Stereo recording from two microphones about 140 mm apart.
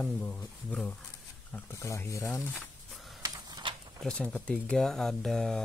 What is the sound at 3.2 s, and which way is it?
Printer, 30° right (ahead or behind).